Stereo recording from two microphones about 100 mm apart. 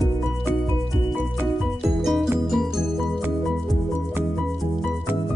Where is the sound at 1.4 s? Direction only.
Centre (ahead or behind).